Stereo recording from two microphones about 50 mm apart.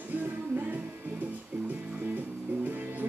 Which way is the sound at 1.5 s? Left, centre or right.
Right.